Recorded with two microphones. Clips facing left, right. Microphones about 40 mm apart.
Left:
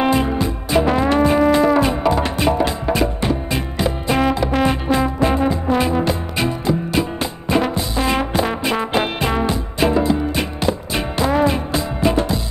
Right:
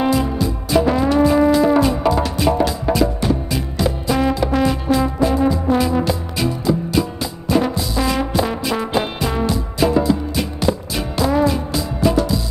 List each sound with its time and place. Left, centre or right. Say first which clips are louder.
0.0 s music: left 1 dB; left